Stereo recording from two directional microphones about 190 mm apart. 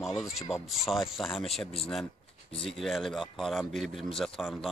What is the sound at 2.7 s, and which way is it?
Speech, centre (ahead or behind).